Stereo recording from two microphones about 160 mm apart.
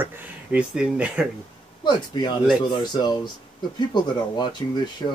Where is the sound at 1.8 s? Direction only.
30° left (ahead or behind).